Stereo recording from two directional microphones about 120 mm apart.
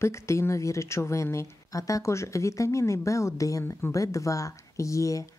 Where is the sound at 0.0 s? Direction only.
25° left (ahead or behind).